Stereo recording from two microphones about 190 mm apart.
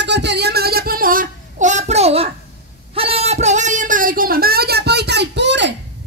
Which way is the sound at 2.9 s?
30° right (ahead or behind).